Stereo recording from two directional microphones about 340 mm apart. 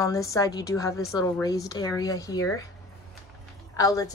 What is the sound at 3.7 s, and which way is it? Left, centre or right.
Speech, centre.